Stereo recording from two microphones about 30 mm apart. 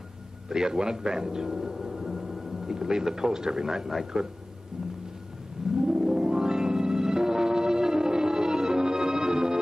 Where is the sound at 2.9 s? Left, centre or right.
Right.